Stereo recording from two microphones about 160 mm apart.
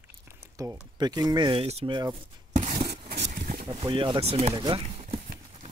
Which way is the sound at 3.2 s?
60° right (ahead or behind).